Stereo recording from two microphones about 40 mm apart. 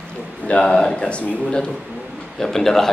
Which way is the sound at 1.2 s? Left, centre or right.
Left.